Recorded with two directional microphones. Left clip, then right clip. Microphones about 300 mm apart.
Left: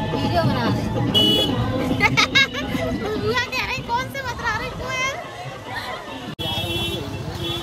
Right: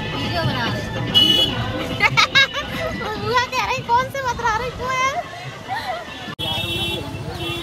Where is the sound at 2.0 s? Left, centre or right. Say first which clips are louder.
Right 2 dB; centre.